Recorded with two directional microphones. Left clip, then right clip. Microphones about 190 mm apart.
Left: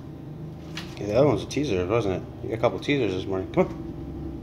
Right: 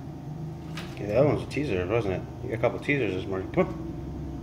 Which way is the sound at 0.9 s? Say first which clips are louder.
Left 2 dB; 20° left (ahead or behind).